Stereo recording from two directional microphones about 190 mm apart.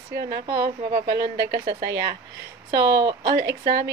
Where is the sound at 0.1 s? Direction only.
55° right (ahead or behind).